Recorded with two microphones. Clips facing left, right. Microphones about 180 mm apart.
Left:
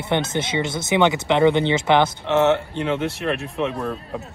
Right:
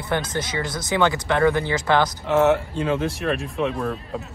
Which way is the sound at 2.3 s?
Centre (ahead or behind).